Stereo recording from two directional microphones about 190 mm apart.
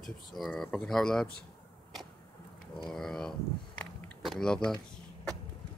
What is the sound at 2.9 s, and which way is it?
Speech, centre (ahead or behind).